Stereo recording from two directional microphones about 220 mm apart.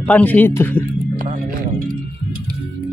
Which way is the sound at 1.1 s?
40° right (ahead or behind).